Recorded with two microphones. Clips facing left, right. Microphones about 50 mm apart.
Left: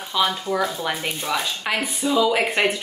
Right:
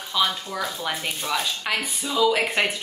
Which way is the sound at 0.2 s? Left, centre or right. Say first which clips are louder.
Left 4 dB; left.